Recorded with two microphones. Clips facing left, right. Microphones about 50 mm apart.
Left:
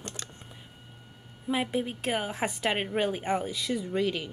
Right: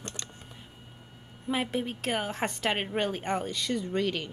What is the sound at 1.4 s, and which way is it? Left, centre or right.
A woman's voice, centre.